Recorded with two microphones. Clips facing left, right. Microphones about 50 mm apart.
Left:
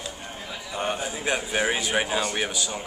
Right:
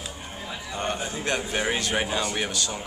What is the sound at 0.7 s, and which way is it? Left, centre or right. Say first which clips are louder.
A man's voice: left 1 dB; centre.